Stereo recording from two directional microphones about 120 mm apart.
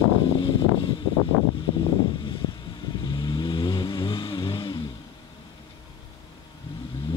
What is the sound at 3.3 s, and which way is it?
Vehicle, 40° left (ahead or behind).